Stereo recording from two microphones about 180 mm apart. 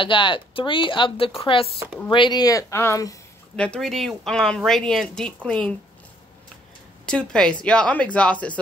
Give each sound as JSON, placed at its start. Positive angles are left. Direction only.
{"t": 0.0, "sound": "speech", "side_deg": 25}
{"t": 3.5, "sound": "speech", "side_deg": 5}
{"t": 7.1, "sound": "speech", "side_deg": 5}